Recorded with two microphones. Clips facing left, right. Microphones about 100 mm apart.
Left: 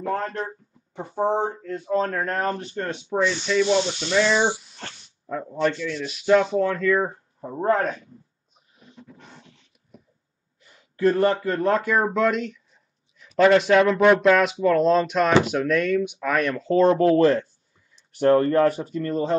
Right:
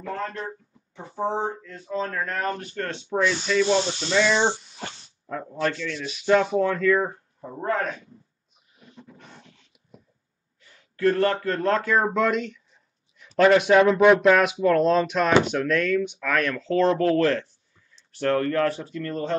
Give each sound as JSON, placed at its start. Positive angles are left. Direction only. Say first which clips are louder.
{"t": 0.0, "sound": "speech", "louder": "left 4 dB", "side_deg": 40}
{"t": 2.6, "sound": "speech", "louder": "left 2 dB", "side_deg": 20}
{"t": 7.1, "sound": "speech", "louder": "left 2 dB", "side_deg": 15}
{"t": 7.6, "sound": "speech", "louder": "left 5 dB", "side_deg": 35}
{"t": 10.6, "sound": "speech", "louder": "left 2 dB", "side_deg": 20}